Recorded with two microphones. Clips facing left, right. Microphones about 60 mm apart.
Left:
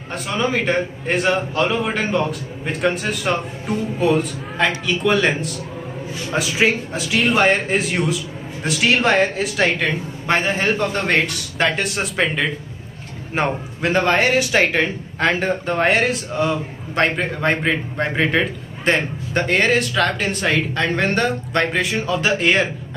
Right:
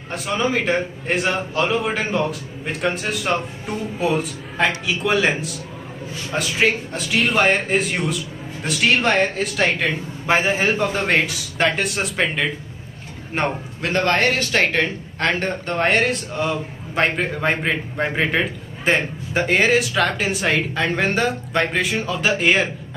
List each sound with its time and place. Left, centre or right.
0.1 s a man's voice: centre